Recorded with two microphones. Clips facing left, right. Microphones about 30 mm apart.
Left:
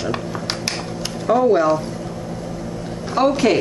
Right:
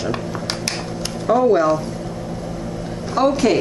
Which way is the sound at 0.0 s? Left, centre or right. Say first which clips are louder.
Even; centre.